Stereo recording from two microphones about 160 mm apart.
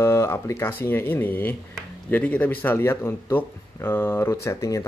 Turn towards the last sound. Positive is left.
turn(degrees=20)  # may be behind; listen again after turning